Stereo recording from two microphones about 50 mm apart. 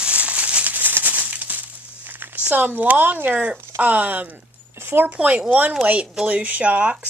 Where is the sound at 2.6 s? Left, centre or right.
Right.